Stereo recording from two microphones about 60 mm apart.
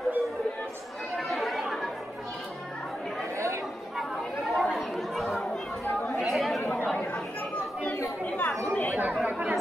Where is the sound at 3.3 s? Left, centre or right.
Right.